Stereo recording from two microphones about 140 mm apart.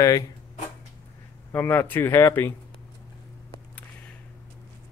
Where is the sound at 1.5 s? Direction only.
15° left (ahead or behind).